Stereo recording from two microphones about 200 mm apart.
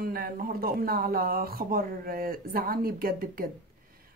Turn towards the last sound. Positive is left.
turn(degrees=-45)  # may be behind; listen again after turning